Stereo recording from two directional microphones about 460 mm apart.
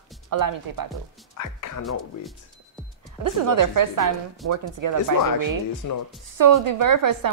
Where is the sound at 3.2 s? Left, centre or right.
Right.